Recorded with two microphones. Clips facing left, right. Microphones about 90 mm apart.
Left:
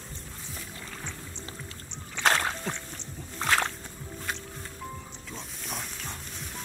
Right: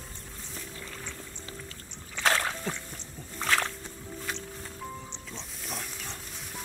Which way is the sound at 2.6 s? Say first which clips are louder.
Even; 5° left (ahead or behind).